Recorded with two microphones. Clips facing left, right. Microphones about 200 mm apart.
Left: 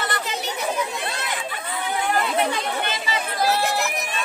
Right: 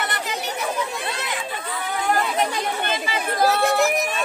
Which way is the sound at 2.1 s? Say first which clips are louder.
Right 1 dB; 45° right (ahead or behind).